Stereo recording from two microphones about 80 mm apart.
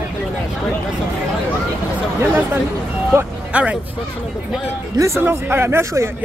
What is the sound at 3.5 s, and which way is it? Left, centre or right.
Speech, centre.